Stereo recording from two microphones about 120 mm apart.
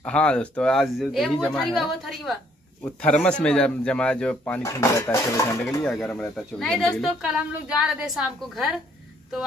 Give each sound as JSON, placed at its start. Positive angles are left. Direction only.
{"t": 0.0, "sound": "speech", "side_deg": 10}
{"t": 2.8, "sound": "speech", "side_deg": 10}
{"t": 4.6, "sound": "dishes", "side_deg": 25}
{"t": 5.9, "sound": "speech", "side_deg": 5}
{"t": 7.3, "sound": "a woman's voice", "side_deg": -10}